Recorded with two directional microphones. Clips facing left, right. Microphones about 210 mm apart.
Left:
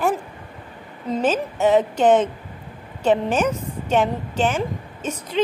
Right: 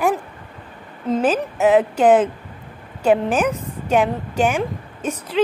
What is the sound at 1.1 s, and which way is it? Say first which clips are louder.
A woman's voice: right 2 dB; 5° right (ahead or behind).